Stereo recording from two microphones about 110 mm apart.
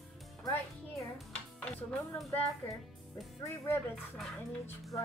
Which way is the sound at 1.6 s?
10° left (ahead or behind).